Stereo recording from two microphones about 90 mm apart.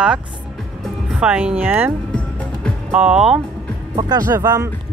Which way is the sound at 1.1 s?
15° right (ahead or behind).